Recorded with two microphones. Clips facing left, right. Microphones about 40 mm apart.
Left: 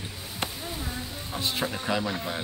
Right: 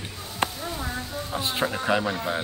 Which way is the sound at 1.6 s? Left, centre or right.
Centre.